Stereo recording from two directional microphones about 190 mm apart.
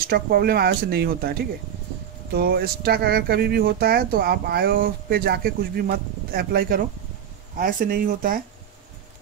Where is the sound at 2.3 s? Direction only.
55° right (ahead or behind).